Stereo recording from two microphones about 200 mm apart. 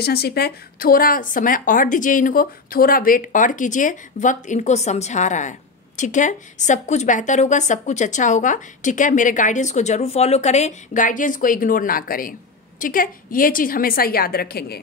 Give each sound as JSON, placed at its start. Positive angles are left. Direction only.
{"t": 0.0, "sound": "speech", "side_deg": 50}